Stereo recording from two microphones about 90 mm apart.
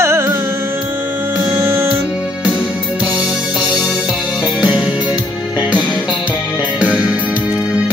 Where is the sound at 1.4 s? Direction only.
20° right (ahead or behind).